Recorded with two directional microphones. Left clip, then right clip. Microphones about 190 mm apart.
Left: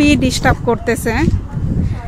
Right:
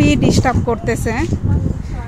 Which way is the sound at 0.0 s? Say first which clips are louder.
Left 2 dB; 15° left (ahead or behind).